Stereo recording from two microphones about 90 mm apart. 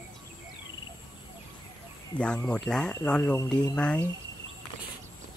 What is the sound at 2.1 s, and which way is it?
Speech, 15° left (ahead or behind).